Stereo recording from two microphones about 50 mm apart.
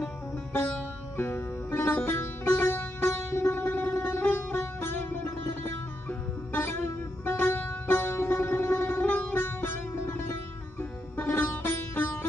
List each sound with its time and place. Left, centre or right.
0.7 s music: left
3.1 s music: left
3.6 s music: left
4.6 s music: left
7.5 s music: left
8.9 s sitar: left
9.4 s music: left